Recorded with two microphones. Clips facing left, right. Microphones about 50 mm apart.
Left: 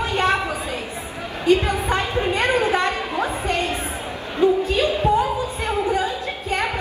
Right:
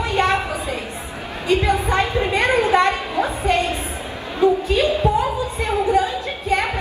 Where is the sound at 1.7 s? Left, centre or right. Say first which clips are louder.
Right 3 dB; right.